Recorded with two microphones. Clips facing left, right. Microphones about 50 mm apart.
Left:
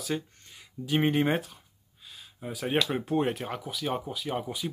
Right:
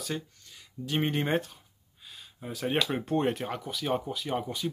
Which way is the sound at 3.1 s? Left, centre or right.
Centre.